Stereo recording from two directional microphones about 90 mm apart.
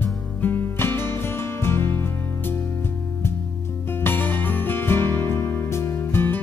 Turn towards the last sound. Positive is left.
turn(degrees=25)  # may be behind; listen again after turning